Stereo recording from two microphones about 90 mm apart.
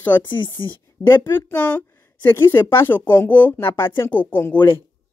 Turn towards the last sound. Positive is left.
turn(degrees=25)  # may be behind; listen again after turning